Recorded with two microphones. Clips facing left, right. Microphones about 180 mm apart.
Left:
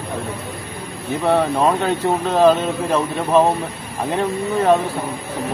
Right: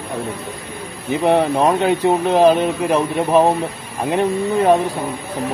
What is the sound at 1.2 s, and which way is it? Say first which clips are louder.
Speech: right 2 dB; 20° right (ahead or behind).